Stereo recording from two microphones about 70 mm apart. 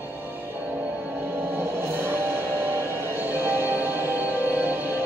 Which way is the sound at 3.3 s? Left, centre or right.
Right.